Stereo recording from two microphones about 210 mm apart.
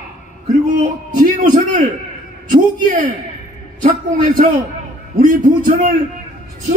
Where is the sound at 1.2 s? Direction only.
40° right (ahead or behind).